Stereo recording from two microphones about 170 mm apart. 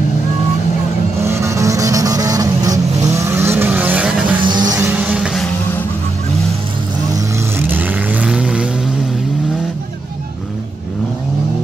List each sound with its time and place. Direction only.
1.2 s vehicle: 15° right (ahead or behind)
4.4 s music: 25° right (ahead or behind); by 5.4 s 5° right (ahead or behind)
7.5 s vehicle: 10° right (ahead or behind)